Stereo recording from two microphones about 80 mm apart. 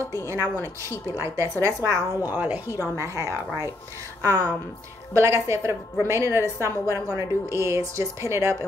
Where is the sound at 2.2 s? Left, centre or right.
Right.